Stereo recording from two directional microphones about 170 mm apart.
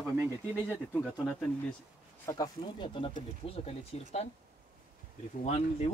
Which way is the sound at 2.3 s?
25° left (ahead or behind).